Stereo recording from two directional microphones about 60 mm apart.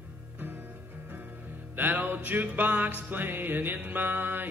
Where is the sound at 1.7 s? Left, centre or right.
Right.